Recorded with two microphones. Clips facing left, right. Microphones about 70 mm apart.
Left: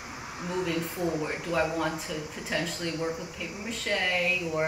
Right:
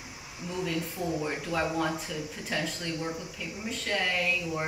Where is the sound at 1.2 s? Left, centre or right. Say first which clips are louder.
Left 2 dB; centre.